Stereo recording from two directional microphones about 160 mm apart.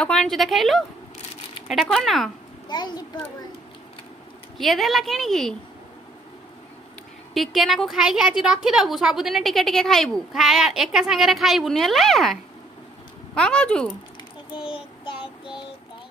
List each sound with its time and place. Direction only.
0.0 s a woman's voice: 5° left (ahead or behind)
2.7 s a child's voice: 25° left (ahead or behind)
4.6 s a woman's voice: centre (ahead or behind)
7.3 s a woman's voice: centre (ahead or behind)
14.5 s child singing: 35° left (ahead or behind)